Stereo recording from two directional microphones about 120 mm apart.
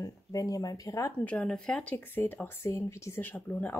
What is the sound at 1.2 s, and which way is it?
Speech, 10° left (ahead or behind).